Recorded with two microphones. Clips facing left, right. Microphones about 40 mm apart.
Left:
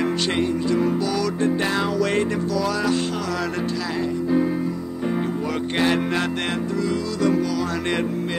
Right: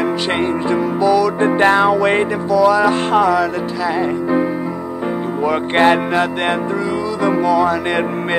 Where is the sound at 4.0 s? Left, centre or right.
Right.